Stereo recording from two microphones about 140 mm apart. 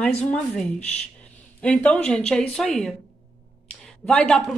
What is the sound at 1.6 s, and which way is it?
Speech, 10° left (ahead or behind).